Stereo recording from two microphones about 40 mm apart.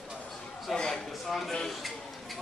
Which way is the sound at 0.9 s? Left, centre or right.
Centre.